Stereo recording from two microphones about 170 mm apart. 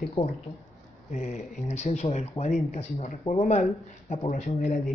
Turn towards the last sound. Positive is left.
turn(degrees=45)  # may be behind; listen again after turning